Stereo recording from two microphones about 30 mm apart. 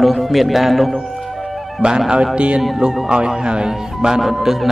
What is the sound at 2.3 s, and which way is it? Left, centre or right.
Speech, right.